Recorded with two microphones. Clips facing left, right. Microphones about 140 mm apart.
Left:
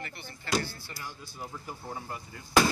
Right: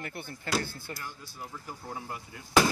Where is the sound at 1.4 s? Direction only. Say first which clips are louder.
Left 1 dB; 5° left (ahead or behind).